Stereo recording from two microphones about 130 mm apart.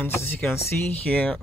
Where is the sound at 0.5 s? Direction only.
10° left (ahead or behind).